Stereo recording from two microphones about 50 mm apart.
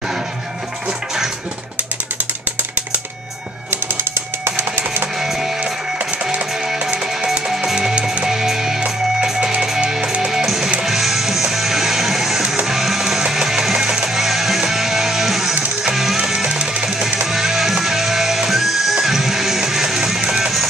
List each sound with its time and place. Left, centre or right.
3.7 s a sound: right
5.2 s music: centre
7.5 s music: centre
16.4 s music: centre